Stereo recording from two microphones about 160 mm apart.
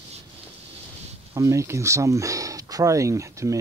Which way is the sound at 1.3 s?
20° right (ahead or behind).